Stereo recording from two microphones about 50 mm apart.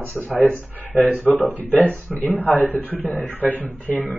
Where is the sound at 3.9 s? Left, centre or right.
Right.